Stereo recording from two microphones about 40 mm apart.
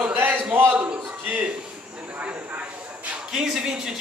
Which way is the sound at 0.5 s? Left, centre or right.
Right.